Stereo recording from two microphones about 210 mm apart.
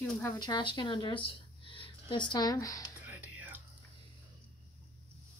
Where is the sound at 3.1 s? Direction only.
5° right (ahead or behind).